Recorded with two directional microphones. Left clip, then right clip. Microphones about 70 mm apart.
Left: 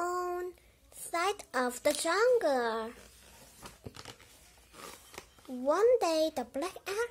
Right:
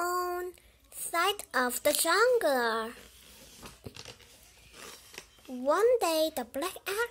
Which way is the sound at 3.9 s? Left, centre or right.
Left.